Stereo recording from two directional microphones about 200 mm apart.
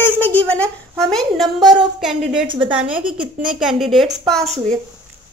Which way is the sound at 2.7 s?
5° right (ahead or behind).